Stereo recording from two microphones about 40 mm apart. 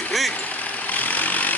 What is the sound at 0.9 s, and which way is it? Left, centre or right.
Vehicle, left.